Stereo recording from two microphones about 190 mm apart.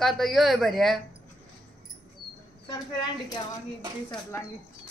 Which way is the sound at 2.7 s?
20° left (ahead or behind).